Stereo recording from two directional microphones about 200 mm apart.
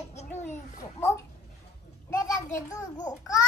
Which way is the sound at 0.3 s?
10° left (ahead or behind).